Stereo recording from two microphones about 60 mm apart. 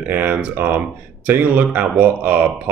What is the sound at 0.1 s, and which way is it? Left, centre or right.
Speech, right.